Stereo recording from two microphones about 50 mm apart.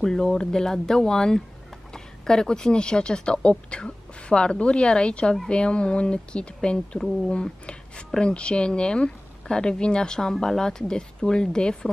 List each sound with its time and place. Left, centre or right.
0.0 s a woman's voice: centre